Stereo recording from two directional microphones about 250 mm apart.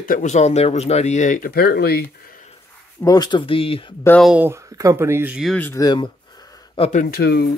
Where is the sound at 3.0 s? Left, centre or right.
Centre.